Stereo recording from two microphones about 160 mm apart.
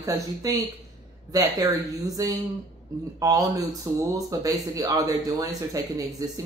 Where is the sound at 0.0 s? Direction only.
20° right (ahead or behind).